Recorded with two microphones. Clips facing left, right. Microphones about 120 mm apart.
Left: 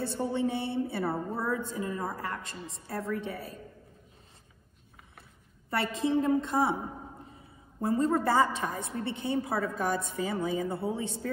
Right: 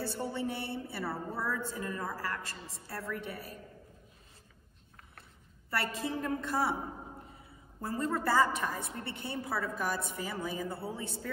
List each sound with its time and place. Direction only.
0.0 s a woman's voice: 20° left (ahead or behind)
5.7 s a woman's voice: 25° left (ahead or behind)
7.8 s a woman's voice: 25° left (ahead or behind)